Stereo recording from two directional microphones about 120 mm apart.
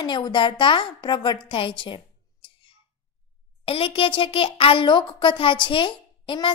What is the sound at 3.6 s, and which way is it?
Speech, 50° left (ahead or behind).